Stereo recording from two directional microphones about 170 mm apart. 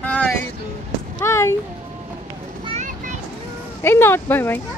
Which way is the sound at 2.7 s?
50° right (ahead or behind).